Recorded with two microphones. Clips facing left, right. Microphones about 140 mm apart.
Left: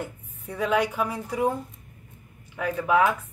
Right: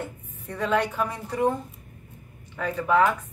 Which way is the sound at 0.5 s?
10° left (ahead or behind).